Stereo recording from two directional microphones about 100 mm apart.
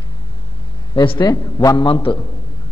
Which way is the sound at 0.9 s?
55° left (ahead or behind).